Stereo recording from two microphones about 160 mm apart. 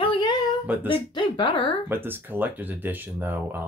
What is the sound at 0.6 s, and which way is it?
Speech, 15° right (ahead or behind).